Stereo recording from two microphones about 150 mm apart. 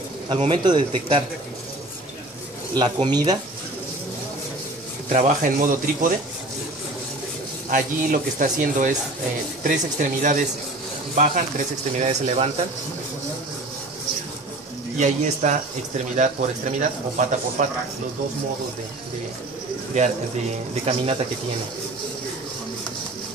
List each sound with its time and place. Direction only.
0.3 s speech: 35° right (ahead or behind)
2.7 s speech: 30° right (ahead or behind)
5.1 s speech: 55° right (ahead or behind)
7.7 s speech: 65° right (ahead or behind)
15.4 s speech: 55° right (ahead or behind)
19.9 s speech: 50° right (ahead or behind)
20.8 s speech: 40° right (ahead or behind)